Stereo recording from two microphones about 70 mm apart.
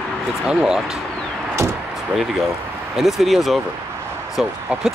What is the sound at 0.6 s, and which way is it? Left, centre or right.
Speech, centre.